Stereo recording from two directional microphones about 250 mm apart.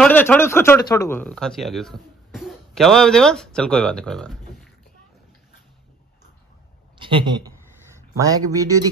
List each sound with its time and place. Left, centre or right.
0.0 s speech: centre
7.0 s a man's voice: centre